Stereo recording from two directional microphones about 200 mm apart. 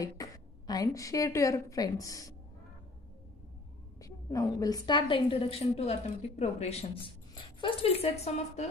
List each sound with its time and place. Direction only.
0.0 s a woman's voice: 20° left (ahead or behind)
4.0 s a woman's voice: 15° left (ahead or behind)